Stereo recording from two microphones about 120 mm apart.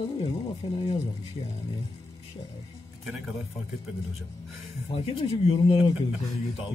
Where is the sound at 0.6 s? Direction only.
45° left (ahead or behind).